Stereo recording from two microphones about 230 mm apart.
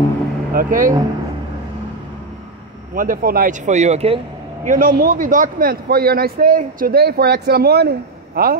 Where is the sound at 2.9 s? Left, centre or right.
Right.